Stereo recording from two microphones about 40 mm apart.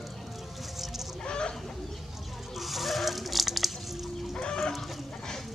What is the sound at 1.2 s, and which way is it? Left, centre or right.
Chicken, left.